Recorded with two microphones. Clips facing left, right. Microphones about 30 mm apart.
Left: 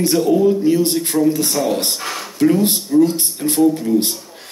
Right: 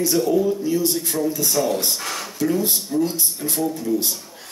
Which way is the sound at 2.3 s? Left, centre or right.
Left.